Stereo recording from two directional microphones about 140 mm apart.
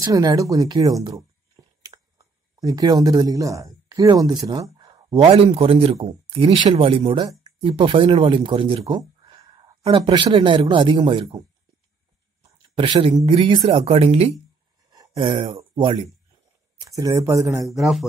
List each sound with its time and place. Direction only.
0.0 s speech: 25° right (ahead or behind)
12.7 s speech: 35° right (ahead or behind)
16.8 s speech: 25° right (ahead or behind)
17.6 s a man's voice: centre (ahead or behind)